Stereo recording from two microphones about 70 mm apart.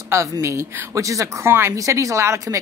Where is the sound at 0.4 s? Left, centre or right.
Right.